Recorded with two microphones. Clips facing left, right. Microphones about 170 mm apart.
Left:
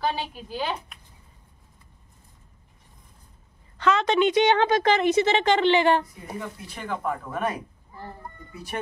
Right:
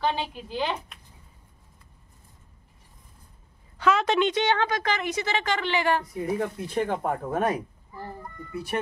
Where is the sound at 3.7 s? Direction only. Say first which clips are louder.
Left 1 dB; 5° right (ahead or behind).